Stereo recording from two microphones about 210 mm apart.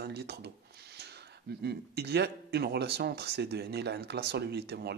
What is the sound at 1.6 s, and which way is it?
Speech, 50° right (ahead or behind).